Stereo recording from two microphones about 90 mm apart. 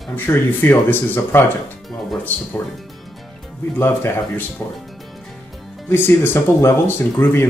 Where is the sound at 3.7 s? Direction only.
25° left (ahead or behind).